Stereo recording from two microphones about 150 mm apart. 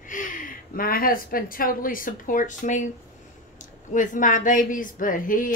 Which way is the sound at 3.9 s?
60° left (ahead or behind).